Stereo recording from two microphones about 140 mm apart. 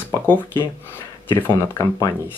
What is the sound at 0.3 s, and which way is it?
Speech, 15° left (ahead or behind).